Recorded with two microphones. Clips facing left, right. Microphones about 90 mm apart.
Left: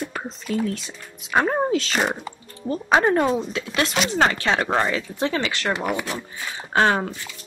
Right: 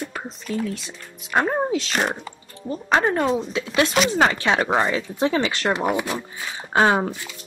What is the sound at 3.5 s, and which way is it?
Speech, 20° right (ahead or behind).